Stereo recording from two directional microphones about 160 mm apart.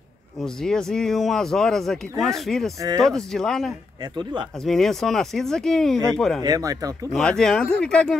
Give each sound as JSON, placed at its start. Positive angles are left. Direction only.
{"t": 0.4, "sound": "speech", "side_deg": 5}
{"t": 4.0, "sound": "speech", "side_deg": -30}
{"t": 4.6, "sound": "speech", "side_deg": 0}
{"t": 6.4, "sound": "speech", "side_deg": -20}
{"t": 7.1, "sound": "speech", "side_deg": 5}